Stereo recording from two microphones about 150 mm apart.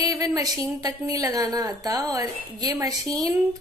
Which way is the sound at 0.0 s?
25° right (ahead or behind).